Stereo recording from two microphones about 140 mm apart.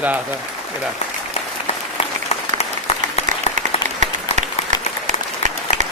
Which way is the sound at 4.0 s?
60° right (ahead or behind).